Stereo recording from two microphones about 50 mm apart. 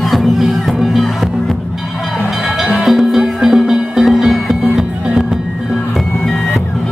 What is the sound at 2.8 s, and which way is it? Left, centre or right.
Music, centre.